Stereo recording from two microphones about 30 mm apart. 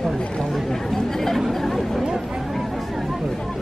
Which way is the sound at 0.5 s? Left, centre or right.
Centre.